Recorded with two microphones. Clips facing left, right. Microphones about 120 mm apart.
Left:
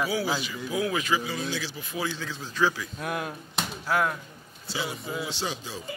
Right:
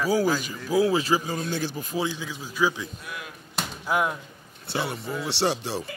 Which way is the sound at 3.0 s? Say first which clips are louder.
Left 8 dB; 50° left (ahead or behind).